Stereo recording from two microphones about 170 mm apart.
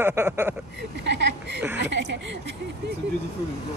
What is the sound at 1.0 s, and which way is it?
Speech, 90° right.